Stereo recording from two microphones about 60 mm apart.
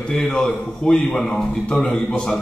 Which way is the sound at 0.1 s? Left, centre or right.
Centre.